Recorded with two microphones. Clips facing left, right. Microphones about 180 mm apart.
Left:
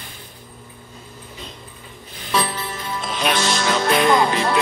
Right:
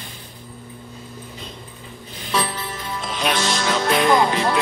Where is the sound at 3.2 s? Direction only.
75° left (ahead or behind).